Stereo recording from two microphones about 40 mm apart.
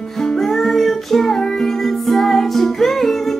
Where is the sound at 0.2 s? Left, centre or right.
Centre.